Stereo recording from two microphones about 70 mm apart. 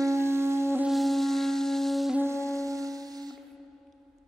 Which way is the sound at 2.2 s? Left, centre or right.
Right.